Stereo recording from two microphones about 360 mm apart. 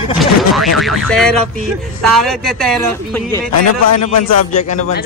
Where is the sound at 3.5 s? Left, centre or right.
Left.